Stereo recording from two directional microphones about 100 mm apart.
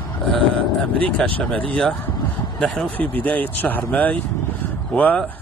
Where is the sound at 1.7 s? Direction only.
10° left (ahead or behind).